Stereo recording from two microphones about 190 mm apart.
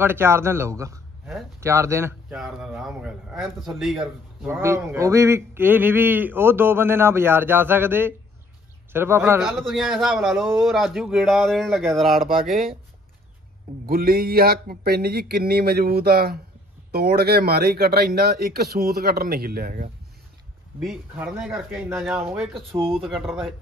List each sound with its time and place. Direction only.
0.0 s a man's voice: 10° right (ahead or behind)
4.5 s speech: 15° right (ahead or behind)
9.6 s a man's voice: centre (ahead or behind)
13.8 s speech: 50° right (ahead or behind)
21.1 s speech: 10° right (ahead or behind)
22.4 s a man's voice: centre (ahead or behind)